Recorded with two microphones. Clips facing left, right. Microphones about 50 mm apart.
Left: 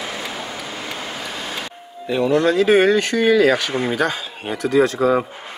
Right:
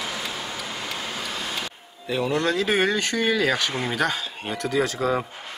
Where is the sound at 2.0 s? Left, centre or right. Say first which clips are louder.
Left 6 dB; centre.